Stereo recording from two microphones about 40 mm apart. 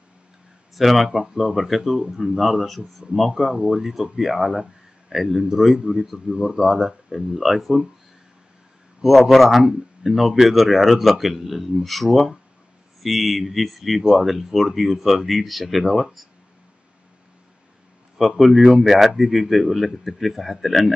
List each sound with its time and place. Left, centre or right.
0.7 s speech: centre
6.2 s speech: centre
6.6 s speech: centre
9.3 s speech: centre
18.1 s speech: centre